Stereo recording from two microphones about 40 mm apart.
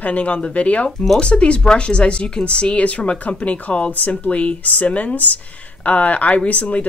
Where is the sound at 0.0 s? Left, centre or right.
Left.